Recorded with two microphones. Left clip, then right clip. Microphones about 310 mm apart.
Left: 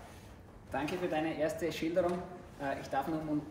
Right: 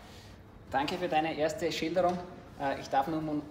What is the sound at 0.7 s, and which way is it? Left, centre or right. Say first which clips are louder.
Speech: right 4 dB; right.